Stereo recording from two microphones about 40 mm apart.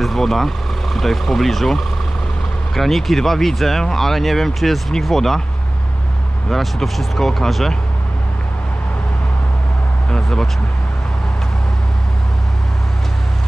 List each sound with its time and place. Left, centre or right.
0.0 s speech: centre
6.5 s speech: centre
10.0 s speech: left